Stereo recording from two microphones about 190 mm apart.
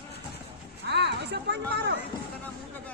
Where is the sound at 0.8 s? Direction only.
60° right (ahead or behind).